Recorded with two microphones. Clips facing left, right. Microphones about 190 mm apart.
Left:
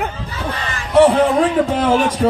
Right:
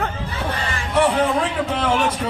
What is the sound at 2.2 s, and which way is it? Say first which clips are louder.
Speech: left 10 dB; 40° left (ahead or behind).